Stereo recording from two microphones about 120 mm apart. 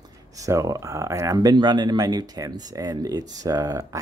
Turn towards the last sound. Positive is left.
turn(degrees=-30)  # may be behind; listen again after turning